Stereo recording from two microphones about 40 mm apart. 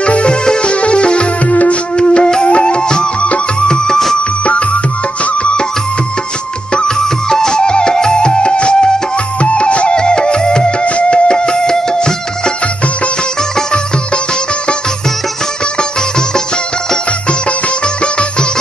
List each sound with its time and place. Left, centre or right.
0.0 s music: left
1.5 s music: left
2.0 s music: left
5.2 s music: left
7.2 s music: centre